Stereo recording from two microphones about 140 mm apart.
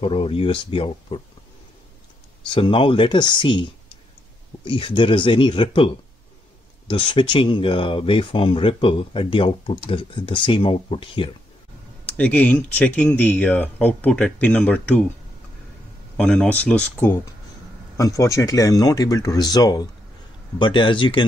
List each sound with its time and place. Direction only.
0.0 s speech: 40° left (ahead or behind)
2.5 s speech: 35° left (ahead or behind)
4.6 s speech: 35° left (ahead or behind)
6.9 s speech: 40° left (ahead or behind)
12.1 s speech: 10° left (ahead or behind)
16.2 s speech: 5° left (ahead or behind); by 21.3 s 35° left (ahead or behind)